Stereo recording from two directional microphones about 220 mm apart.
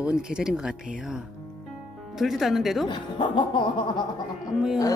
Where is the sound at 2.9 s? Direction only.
20° left (ahead or behind).